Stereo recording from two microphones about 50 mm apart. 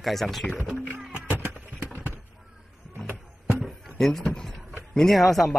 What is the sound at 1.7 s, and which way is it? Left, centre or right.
Clip-clop, left.